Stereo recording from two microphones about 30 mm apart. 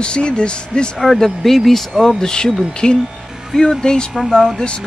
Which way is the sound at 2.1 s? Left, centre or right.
Left.